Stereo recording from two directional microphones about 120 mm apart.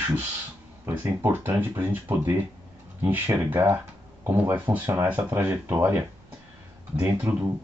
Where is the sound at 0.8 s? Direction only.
20° right (ahead or behind).